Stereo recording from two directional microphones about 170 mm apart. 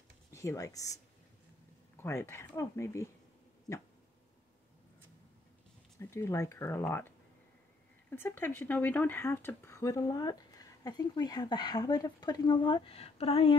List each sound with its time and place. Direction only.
0.3 s speech: 15° left (ahead or behind)
2.0 s speech: 15° left (ahead or behind)
5.9 s speech: 15° left (ahead or behind); by 13.6 s 35° left (ahead or behind)